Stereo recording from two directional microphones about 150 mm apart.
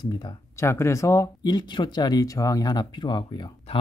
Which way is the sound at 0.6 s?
15° left (ahead or behind).